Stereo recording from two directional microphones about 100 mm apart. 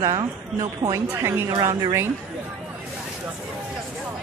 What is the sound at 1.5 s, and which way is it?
Speech, 35° right (ahead or behind).